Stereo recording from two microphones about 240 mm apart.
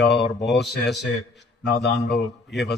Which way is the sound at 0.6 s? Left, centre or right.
Centre.